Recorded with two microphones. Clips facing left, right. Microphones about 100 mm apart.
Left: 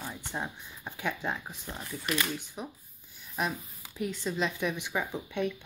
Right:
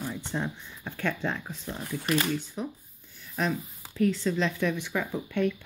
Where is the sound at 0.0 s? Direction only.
15° left (ahead or behind).